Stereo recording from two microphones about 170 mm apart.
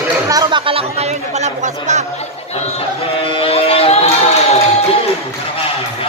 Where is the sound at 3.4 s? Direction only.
35° left (ahead or behind).